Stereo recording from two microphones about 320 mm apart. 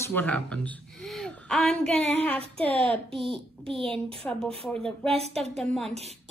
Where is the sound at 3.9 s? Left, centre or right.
Centre.